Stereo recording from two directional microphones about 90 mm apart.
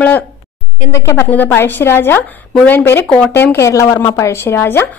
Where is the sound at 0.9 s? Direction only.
30° left (ahead or behind).